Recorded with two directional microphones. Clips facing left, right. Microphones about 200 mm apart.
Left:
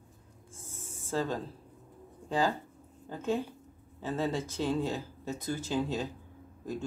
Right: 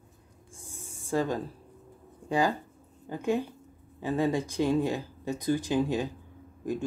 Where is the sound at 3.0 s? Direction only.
15° right (ahead or behind).